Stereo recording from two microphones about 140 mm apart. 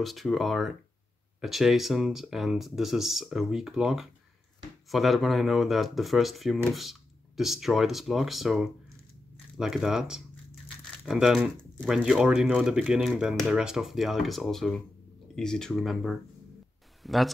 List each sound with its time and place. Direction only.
0.0 s speech: centre (ahead or behind)